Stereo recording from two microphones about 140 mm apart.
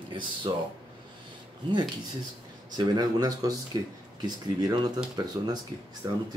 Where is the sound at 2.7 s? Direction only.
30° right (ahead or behind).